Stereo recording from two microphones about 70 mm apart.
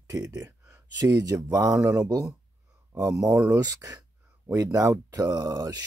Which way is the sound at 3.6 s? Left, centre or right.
Right.